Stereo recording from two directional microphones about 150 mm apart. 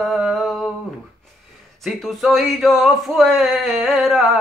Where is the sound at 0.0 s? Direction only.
Centre (ahead or behind).